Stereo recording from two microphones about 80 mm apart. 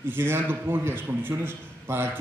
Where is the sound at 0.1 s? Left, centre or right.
Right.